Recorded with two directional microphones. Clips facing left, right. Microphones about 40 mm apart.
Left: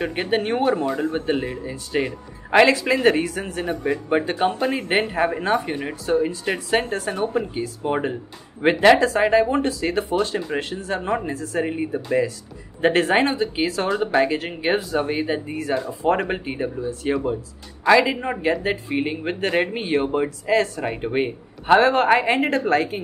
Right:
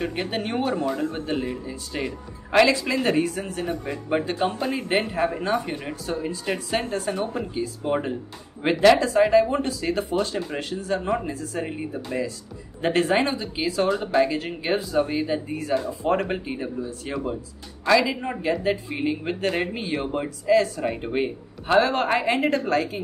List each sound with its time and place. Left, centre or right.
0.0 s speech: left
6.8 s speech: left
7.8 s speech: left
11.6 s speech: left
17.1 s speech: centre; by 20.8 s left
20.8 s speech: left